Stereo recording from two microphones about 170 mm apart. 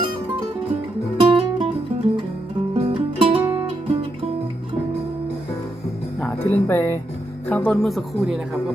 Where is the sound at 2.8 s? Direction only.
35° right (ahead or behind).